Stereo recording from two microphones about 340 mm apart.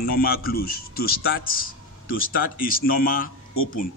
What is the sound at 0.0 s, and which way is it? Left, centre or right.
Speech, left.